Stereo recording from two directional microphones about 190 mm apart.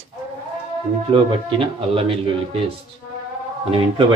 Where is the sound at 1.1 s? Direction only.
25° right (ahead or behind).